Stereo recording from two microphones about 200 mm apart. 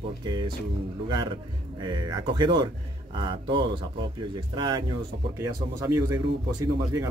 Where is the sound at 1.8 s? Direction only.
20° right (ahead or behind).